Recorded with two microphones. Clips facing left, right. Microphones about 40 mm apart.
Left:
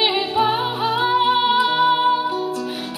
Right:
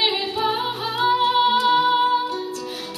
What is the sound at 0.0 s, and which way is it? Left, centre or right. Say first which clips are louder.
Music: left 4 dB; centre.